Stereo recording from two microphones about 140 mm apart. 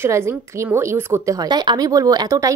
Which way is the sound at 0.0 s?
20° right (ahead or behind).